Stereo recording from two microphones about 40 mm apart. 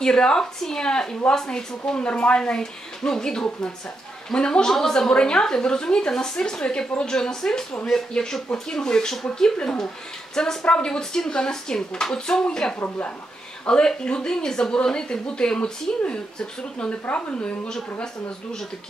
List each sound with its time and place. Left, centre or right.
0.0 s a woman's voice: centre
5.1 s a woman's voice: left
12.7 s a woman's voice: left
13.7 s a woman's voice: left
17.1 s a woman's voice: left